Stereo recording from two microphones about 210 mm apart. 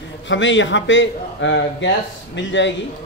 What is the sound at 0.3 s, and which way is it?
A man's voice, 60° left (ahead or behind).